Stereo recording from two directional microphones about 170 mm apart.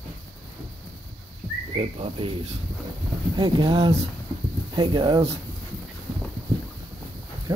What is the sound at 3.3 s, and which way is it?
Speech, 25° right (ahead or behind).